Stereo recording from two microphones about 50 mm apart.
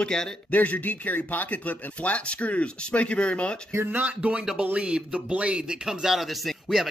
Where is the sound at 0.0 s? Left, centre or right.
Centre.